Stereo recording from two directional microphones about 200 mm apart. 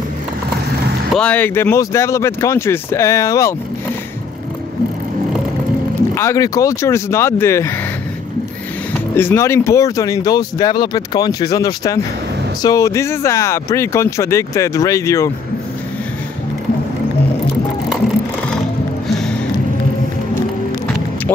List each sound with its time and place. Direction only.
1.1 s speech: 5° left (ahead or behind)
6.1 s speech: 15° left (ahead or behind)
9.1 s speech: 10° left (ahead or behind)